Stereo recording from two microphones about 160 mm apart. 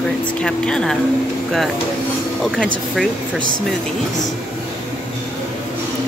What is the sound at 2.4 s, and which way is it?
Speech, centre (ahead or behind).